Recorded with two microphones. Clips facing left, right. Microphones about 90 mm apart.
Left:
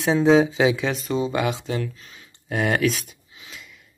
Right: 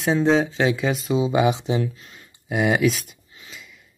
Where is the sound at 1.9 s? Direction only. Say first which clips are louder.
Right 1 dB; 5° right (ahead or behind).